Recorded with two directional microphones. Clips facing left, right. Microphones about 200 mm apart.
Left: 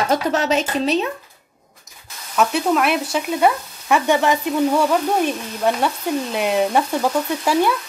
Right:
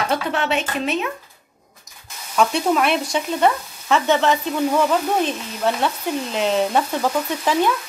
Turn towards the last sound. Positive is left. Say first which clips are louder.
# left 1 dB
turn(degrees=10)  # may be behind; listen again after turning